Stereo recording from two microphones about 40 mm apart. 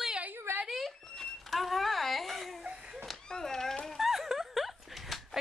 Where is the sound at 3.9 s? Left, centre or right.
Centre.